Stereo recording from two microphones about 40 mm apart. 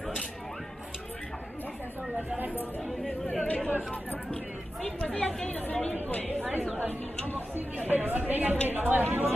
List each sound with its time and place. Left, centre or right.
3.4 s chatter: left
4.8 s chatter: left
5.5 s chatter: left
6.2 s chatter: right
7.3 s chatter: right
8.3 s a sound: right
8.6 s speech: right